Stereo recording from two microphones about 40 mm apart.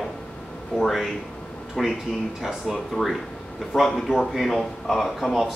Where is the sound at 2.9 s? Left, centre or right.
Centre.